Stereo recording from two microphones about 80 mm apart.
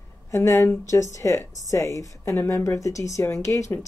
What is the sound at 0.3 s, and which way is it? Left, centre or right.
A woman's voice, left.